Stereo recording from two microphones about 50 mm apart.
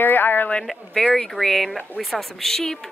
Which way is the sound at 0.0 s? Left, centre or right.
Left.